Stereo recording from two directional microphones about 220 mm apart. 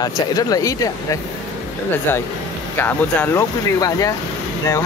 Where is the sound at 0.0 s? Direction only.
15° left (ahead or behind).